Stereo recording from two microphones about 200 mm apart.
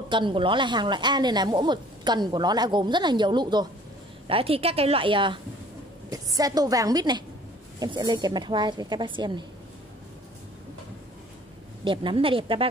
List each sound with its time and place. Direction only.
0.1 s a woman's voice: 25° right (ahead or behind)
11.8 s a woman's voice: 25° right (ahead or behind)